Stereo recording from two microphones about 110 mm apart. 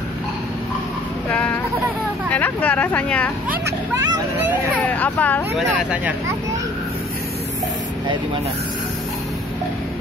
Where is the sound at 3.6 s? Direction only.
35° right (ahead or behind).